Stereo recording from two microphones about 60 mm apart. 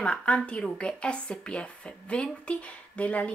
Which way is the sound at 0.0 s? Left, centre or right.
Centre.